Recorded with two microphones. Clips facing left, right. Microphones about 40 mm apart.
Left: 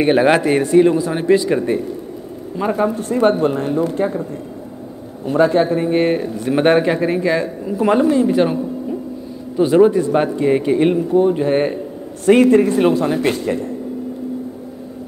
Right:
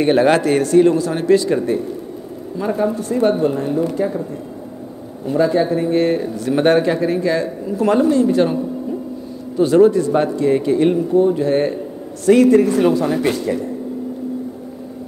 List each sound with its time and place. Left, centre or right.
0.0 s speech: centre; by 4.1 s left
5.2 s speech: left; by 8.5 s centre
9.6 s speech: centre
12.3 s speech: left